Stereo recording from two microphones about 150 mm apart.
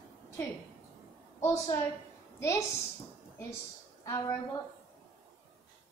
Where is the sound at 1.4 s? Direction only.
20° left (ahead or behind).